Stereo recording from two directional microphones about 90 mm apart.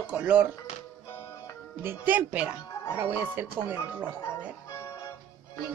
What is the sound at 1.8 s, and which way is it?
Speech, 25° right (ahead or behind).